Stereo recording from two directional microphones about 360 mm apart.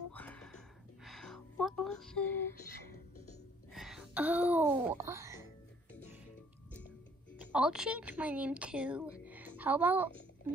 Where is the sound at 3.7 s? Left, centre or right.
Centre.